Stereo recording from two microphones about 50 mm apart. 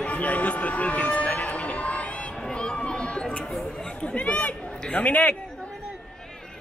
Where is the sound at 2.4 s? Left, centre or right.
Centre.